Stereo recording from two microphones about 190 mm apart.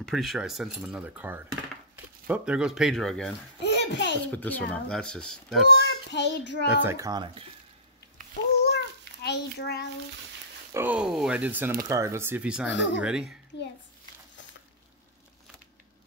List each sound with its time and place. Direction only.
0.0 s speech: centre (ahead or behind)
3.6 s a child's voice: 65° left (ahead or behind)
4.3 s speech: 10° left (ahead or behind)
6.1 s a child's voice: 65° left (ahead or behind)
6.8 s speech: 15° right (ahead or behind)
8.5 s a sound: 60° left (ahead or behind)
10.7 s speech: 10° right (ahead or behind)
12.6 s a child's voice: 70° left (ahead or behind)
13.0 s speech: 5° right (ahead or behind)